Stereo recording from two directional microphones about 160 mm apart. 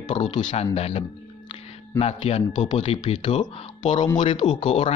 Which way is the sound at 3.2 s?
30° left (ahead or behind).